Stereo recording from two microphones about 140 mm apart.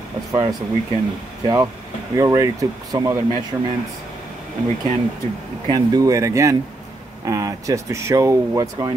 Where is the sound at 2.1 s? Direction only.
20° right (ahead or behind).